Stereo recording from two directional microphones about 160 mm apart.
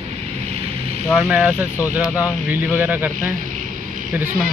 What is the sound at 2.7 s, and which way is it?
Speech, 10° right (ahead or behind).